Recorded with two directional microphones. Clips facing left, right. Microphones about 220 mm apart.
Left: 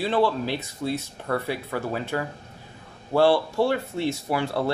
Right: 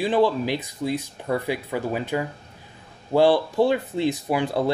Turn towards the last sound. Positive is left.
turn(degrees=-15)  # may be behind; listen again after turning